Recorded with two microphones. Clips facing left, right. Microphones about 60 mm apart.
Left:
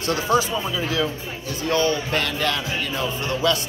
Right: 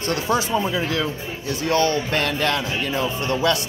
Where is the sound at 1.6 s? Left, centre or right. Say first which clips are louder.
Right 1 dB; right.